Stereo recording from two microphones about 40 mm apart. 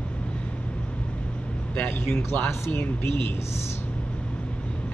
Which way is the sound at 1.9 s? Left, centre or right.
Left.